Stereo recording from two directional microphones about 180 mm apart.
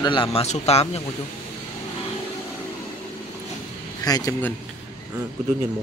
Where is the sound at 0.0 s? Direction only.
25° left (ahead or behind).